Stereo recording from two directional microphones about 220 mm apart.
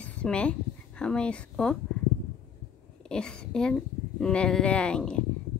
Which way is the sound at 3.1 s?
5° left (ahead or behind).